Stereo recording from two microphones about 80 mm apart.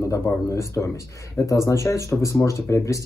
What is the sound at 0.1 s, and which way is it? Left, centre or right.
Speech, left.